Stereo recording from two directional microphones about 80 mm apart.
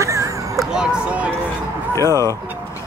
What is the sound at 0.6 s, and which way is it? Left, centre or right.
Speech, centre.